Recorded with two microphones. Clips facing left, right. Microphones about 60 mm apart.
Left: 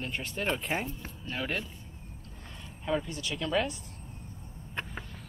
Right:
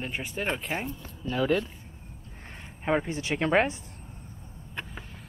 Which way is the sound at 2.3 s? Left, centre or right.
Right.